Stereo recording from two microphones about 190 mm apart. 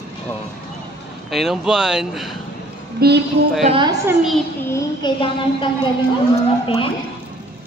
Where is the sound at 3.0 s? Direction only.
55° right (ahead or behind).